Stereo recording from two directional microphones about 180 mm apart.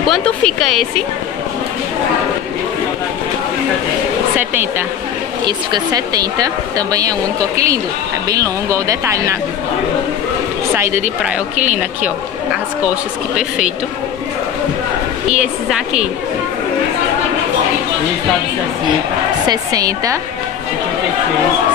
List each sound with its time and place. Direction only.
0.0 s a woman's voice: 5° left (ahead or behind)
5.4 s speech: 20° right (ahead or behind)
11.5 s speech: 40° right (ahead or behind)
15.2 s a woman's voice: 5° right (ahead or behind)
19.4 s speech: 20° right (ahead or behind)